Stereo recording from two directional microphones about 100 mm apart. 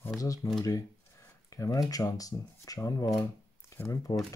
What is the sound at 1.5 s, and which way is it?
Speech, 35° left (ahead or behind).